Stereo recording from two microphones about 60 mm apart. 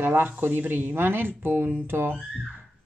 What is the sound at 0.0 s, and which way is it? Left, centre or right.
Speech, right.